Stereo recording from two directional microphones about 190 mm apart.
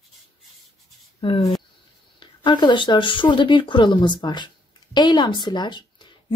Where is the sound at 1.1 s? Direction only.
25° left (ahead or behind).